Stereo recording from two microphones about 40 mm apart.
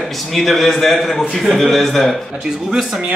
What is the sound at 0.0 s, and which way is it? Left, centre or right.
A man's voice, centre.